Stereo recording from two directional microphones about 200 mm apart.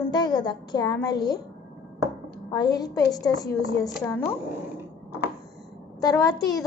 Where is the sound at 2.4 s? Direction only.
20° left (ahead or behind).